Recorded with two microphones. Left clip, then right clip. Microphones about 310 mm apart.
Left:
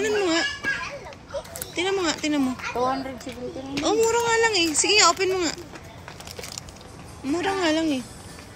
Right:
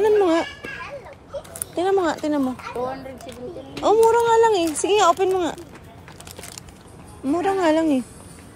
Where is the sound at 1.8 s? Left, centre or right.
Centre.